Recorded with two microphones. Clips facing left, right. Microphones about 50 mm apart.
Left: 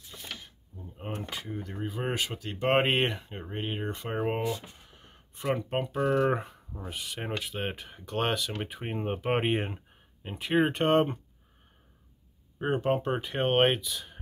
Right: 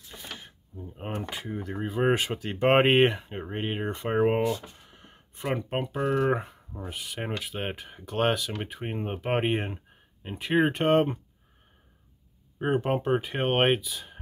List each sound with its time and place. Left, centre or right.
0.1 s drawer open or close: right
0.7 s a sound: right
1.3 s speech: centre
2.0 s speech: right
4.8 s a sound: centre
5.6 s speech: centre
12.5 s speech: centre